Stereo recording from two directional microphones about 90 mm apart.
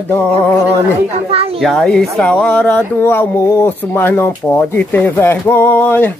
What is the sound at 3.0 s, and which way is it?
Speech, 25° left (ahead or behind).